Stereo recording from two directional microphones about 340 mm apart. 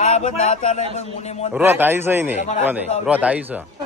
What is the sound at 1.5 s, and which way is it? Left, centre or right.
A man's voice, centre.